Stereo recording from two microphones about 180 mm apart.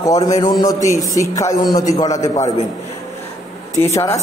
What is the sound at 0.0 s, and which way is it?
A man's voice, 20° left (ahead or behind).